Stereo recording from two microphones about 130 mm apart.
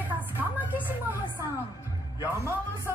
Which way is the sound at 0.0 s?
10° right (ahead or behind).